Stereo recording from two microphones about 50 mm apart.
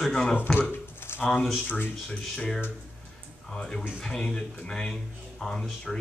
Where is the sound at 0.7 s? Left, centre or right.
Left.